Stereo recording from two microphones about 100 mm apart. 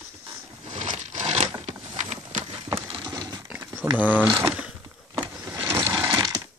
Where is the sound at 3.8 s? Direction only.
25° right (ahead or behind).